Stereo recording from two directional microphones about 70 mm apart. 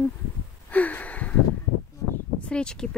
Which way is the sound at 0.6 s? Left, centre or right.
Left.